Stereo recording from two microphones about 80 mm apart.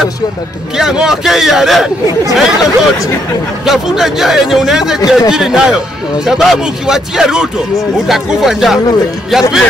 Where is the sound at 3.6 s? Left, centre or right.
Centre.